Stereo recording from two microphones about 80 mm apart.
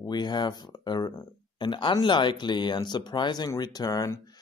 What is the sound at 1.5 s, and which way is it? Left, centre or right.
Speech, left.